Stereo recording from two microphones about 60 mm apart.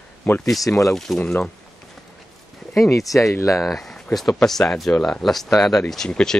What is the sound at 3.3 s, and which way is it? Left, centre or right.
Speech, left.